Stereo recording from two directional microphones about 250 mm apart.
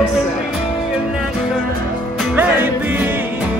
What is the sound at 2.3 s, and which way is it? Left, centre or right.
Music, centre.